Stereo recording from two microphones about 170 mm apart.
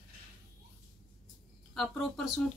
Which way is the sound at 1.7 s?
Centre (ahead or behind).